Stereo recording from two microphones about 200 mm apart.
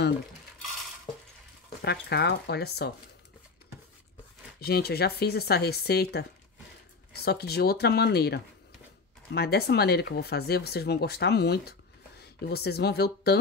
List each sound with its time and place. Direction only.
1.8 s speech: 55° left (ahead or behind)
4.6 s speech: 50° left (ahead or behind)